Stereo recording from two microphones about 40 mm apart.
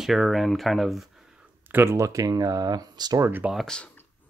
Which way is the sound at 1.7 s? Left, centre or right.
Right.